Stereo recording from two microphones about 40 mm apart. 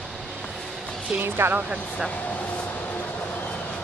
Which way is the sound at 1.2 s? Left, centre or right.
Right.